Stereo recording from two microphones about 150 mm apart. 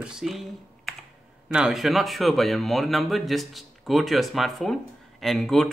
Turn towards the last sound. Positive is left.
turn(degrees=0)  # may be behind; listen again after turning